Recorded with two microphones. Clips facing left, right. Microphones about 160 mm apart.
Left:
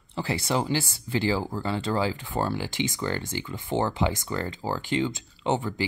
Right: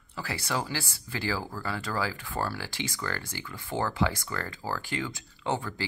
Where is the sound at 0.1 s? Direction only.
25° left (ahead or behind).